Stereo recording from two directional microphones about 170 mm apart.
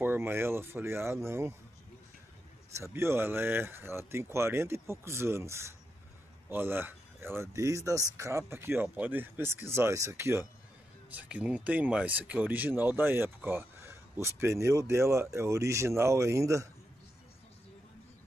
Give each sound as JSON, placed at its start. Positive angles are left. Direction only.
{"t": 0.0, "sound": "speech", "side_deg": -10}
{"t": 2.8, "sound": "speech", "side_deg": -15}